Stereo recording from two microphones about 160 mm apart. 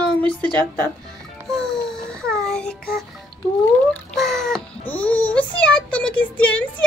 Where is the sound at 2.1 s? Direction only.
5° left (ahead or behind).